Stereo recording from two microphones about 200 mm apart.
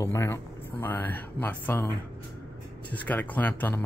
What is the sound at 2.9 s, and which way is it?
Speech, 10° left (ahead or behind).